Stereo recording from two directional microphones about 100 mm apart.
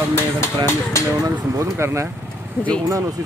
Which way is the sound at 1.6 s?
30° right (ahead or behind).